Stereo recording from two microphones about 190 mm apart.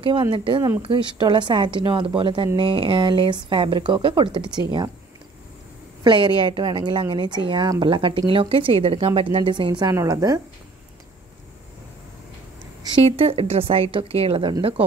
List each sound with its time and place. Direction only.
0.0 s a woman's voice: 25° right (ahead or behind)
6.0 s a woman's voice: 25° right (ahead or behind)
12.9 s a woman's voice: 30° right (ahead or behind)